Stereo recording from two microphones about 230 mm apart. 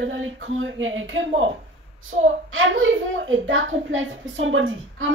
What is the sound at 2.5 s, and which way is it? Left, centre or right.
Speech, right.